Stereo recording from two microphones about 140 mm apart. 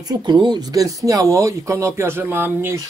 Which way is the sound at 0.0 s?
30° right (ahead or behind).